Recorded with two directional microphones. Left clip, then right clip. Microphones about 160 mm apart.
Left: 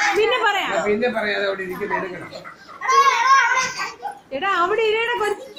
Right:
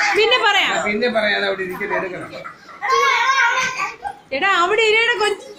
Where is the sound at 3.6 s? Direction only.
30° right (ahead or behind).